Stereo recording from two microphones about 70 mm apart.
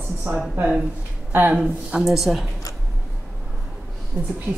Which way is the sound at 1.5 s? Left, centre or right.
Centre.